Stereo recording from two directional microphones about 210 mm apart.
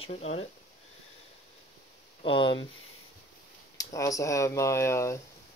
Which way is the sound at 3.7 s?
15° left (ahead or behind).